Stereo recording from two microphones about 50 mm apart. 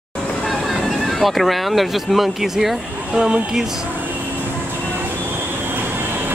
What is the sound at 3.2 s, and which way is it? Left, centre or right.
Speech, right.